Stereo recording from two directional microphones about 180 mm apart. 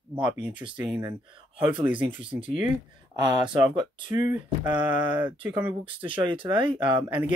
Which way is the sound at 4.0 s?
45° left (ahead or behind).